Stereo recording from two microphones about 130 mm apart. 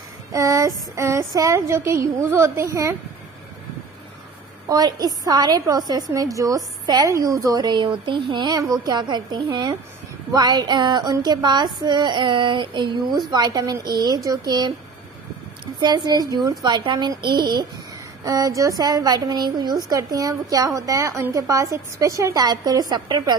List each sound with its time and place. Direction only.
0.3 s a woman's voice: 25° right (ahead or behind)
4.6 s a woman's voice: 30° right (ahead or behind)